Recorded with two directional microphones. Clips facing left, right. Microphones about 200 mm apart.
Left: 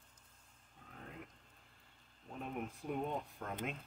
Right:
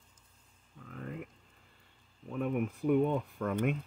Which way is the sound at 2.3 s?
70° right (ahead or behind).